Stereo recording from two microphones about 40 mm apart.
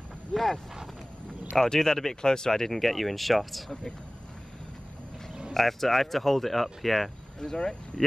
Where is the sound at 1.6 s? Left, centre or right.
Centre.